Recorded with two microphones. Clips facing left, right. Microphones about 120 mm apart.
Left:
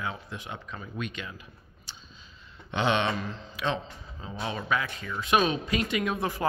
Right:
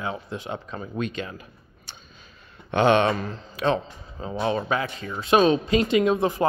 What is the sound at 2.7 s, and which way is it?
Speech, 50° right (ahead or behind).